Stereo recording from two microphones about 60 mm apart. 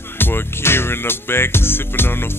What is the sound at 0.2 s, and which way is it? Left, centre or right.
Music, left.